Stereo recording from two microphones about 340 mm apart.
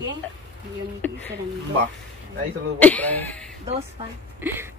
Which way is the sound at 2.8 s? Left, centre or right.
Centre.